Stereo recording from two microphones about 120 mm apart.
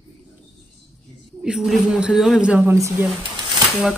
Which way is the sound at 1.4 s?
5° right (ahead or behind).